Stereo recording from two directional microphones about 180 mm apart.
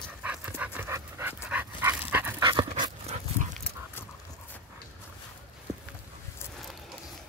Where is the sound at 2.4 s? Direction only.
25° right (ahead or behind).